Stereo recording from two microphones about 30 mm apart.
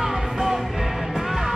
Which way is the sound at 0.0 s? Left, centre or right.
Right.